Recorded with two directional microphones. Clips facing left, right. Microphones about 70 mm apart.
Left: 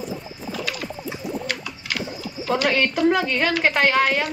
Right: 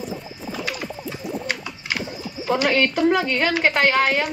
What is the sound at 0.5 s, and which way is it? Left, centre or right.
Bird, centre.